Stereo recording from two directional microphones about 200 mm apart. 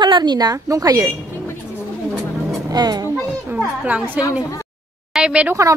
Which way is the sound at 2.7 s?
20° right (ahead or behind).